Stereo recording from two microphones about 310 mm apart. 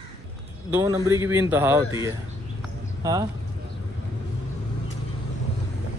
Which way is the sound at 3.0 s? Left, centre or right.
Centre.